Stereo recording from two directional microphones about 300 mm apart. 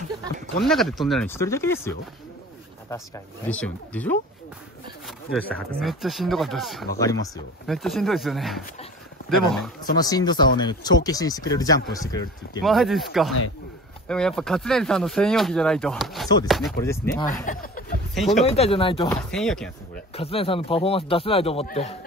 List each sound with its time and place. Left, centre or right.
0.7 s speech: centre
3.4 s speech: centre
7.0 s speech: centre
7.6 s speech: centre
9.9 s speech: centre
12.6 s speech: centre
17.5 s a sound: left
18.1 s speech: centre
18.4 s speech: centre
19.3 s speech: centre
20.2 s speech: centre